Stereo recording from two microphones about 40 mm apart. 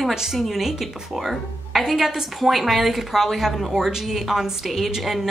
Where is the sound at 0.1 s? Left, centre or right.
Centre.